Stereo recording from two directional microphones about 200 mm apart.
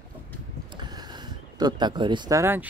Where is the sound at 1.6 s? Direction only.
20° right (ahead or behind).